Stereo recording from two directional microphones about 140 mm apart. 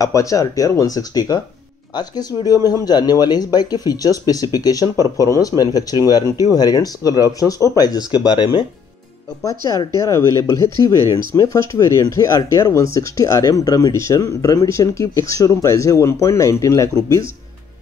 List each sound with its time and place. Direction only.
0.0 s speech: 25° left (ahead or behind)
9.7 s speech: 25° left (ahead or behind)